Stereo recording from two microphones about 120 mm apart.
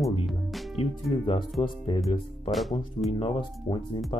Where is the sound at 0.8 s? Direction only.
50° left (ahead or behind).